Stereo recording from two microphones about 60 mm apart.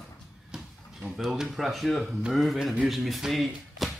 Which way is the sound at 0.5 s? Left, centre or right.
Centre.